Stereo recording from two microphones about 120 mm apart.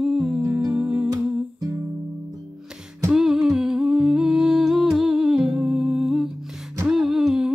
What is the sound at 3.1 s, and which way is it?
Humming, 5° right (ahead or behind).